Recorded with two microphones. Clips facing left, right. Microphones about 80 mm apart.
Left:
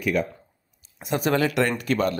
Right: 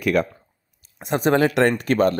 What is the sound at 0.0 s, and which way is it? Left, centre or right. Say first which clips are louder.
Speech: right 4 dB; right.